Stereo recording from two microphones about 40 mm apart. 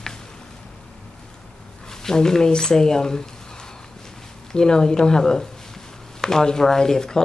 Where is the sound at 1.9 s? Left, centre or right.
Centre.